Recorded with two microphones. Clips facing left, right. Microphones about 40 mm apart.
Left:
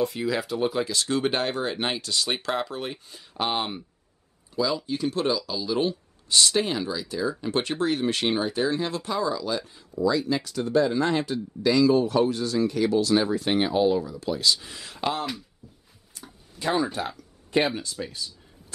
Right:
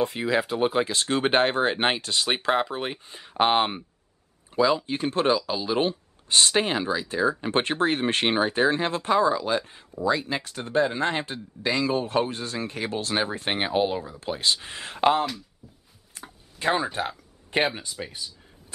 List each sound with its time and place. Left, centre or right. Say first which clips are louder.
0.0 s speech: right 2 dB; right
16.2 s a sound: right 2 dB; right
17.6 s speech: left 1 dB; centre